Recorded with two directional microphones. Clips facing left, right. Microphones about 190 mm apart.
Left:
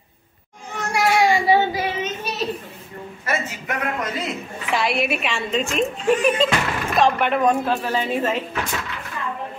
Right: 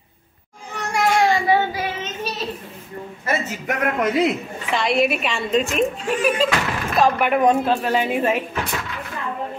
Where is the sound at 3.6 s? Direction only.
60° right (ahead or behind).